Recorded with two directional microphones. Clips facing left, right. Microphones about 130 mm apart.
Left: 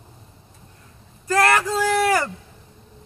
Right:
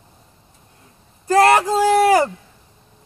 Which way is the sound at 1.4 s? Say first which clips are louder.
Right 5 dB; 20° right (ahead or behind).